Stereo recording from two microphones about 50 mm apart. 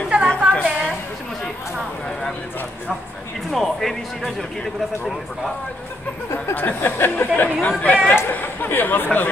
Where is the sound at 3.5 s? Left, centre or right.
Centre.